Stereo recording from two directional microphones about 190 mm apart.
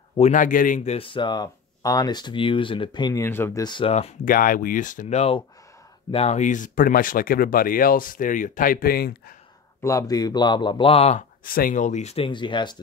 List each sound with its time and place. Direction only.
0.2 s speech: 40° left (ahead or behind)
4.2 s speech: 50° left (ahead or behind)
9.8 s speech: 15° left (ahead or behind); by 11.2 s 35° left (ahead or behind)
11.4 s speech: 50° left (ahead or behind); by 12.7 s 25° left (ahead or behind)